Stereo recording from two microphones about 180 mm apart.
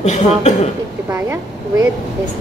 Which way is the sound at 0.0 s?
40° left (ahead or behind).